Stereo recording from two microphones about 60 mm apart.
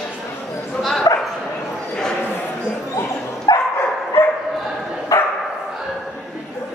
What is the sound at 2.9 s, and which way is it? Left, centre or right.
Bow-wow, left.